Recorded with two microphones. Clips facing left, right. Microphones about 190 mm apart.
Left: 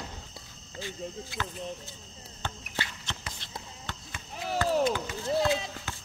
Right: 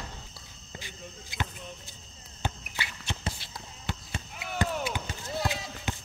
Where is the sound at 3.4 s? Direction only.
10° right (ahead or behind).